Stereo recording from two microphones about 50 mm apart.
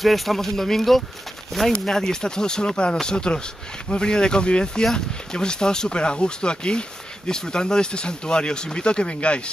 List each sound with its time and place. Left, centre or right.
0.0 s speech: centre; by 9.4 s left